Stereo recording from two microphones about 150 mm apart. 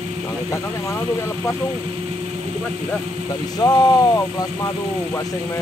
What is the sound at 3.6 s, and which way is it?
Speech, 25° left (ahead or behind).